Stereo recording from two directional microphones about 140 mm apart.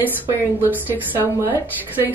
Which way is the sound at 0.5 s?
15° right (ahead or behind).